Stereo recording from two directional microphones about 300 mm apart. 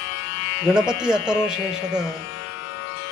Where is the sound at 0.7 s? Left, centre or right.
Centre.